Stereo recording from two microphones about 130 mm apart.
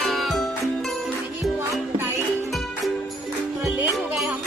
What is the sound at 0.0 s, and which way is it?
Music, centre (ahead or behind).